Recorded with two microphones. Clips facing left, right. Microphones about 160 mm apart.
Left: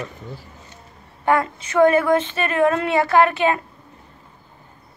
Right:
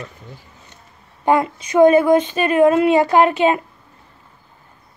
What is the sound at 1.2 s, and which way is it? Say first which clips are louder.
Speech: right 3 dB; 15° right (ahead or behind).